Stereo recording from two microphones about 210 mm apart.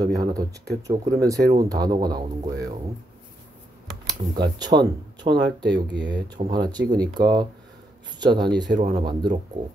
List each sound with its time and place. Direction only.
0.0 s speech: 15° right (ahead or behind)
4.4 s speech: 20° right (ahead or behind)